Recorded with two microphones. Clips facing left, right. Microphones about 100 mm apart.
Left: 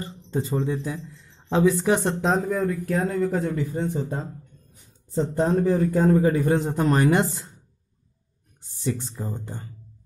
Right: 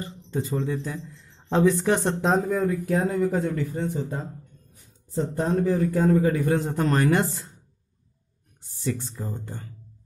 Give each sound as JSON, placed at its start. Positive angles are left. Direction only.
{"t": 0.0, "sound": "a sound", "side_deg": 30}
{"t": 0.8, "sound": "speech", "side_deg": 5}
{"t": 2.8, "sound": "speech", "side_deg": -15}
{"t": 3.7, "sound": "a man's voice", "side_deg": 30}
{"t": 8.5, "sound": "speech", "side_deg": 20}